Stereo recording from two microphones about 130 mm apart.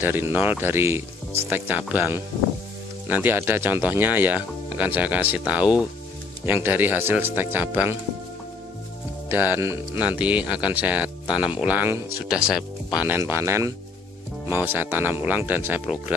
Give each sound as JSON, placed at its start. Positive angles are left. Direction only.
{"t": 0.0, "sound": "speech", "side_deg": -15}
{"t": 9.3, "sound": "speech", "side_deg": -15}